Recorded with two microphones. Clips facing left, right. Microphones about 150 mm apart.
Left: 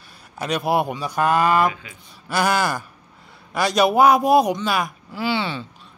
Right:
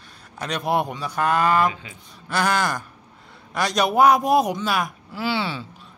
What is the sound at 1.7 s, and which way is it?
Speech, 25° right (ahead or behind).